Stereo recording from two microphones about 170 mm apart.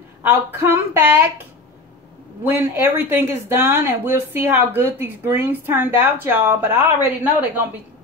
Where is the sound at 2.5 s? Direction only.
10° right (ahead or behind).